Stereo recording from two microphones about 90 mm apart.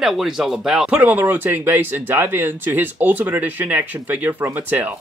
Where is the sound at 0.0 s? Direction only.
5° right (ahead or behind); by 4.9 s 20° right (ahead or behind).